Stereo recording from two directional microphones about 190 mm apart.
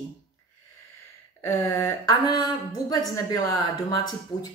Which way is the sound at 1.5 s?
15° left (ahead or behind).